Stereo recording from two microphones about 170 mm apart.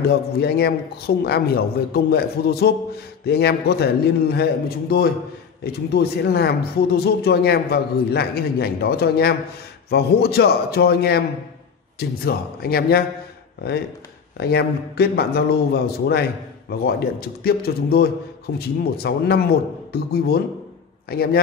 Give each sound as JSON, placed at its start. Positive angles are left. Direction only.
{"t": 0.4, "sound": "speech", "side_deg": 70}
{"t": 12.3, "sound": "speech", "side_deg": 65}
{"t": 14.4, "sound": "speech", "side_deg": 70}